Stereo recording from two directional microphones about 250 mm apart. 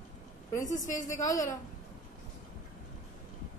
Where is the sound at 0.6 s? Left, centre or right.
Left.